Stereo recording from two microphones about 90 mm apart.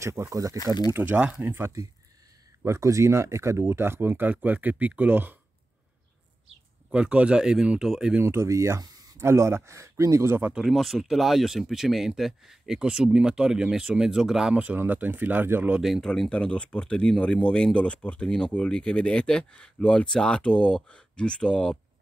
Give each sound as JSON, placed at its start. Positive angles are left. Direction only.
{"t": 0.0, "sound": "speech", "side_deg": -30}
{"t": 0.9, "sound": "speech", "side_deg": -15}
{"t": 6.9, "sound": "speech", "side_deg": -15}
{"t": 8.2, "sound": "speech", "side_deg": -30}
{"t": 8.8, "sound": "a sound", "side_deg": -45}
{"t": 9.2, "sound": "speech", "side_deg": -30}
{"t": 10.5, "sound": "speech", "side_deg": -5}
{"t": 15.8, "sound": "speech", "side_deg": 0}
{"t": 16.1, "sound": "speech", "side_deg": 10}